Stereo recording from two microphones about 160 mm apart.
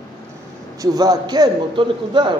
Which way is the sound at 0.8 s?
25° right (ahead or behind).